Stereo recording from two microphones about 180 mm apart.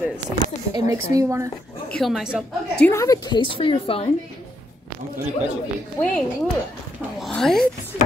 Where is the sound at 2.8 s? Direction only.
20° left (ahead or behind).